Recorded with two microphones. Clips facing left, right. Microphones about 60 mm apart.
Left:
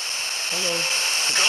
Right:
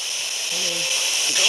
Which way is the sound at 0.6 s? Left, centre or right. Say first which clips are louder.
Left 2 dB; left.